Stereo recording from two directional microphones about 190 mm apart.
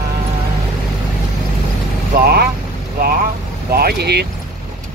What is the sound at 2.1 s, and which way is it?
Speech, 55° right (ahead or behind).